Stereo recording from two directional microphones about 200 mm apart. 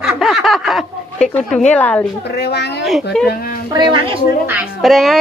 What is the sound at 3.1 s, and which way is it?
Speech, 5° left (ahead or behind).